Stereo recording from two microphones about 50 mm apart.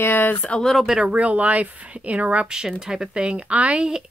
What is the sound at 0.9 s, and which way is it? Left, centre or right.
A woman's voice, right.